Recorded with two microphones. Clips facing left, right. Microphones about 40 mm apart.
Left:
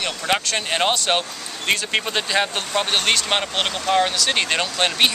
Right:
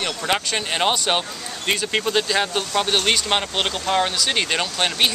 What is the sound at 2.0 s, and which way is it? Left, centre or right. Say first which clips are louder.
Speech: right 1 dB; centre.